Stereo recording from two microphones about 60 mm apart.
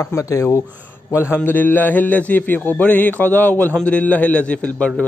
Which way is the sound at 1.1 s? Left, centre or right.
Left.